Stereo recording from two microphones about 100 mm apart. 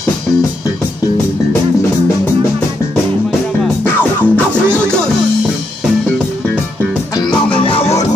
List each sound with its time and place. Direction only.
3.8 s music: 15° left (ahead or behind)
7.5 s music: 65° left (ahead or behind)